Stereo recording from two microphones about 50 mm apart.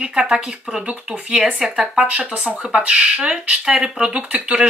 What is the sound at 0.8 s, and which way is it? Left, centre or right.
A woman's voice, right.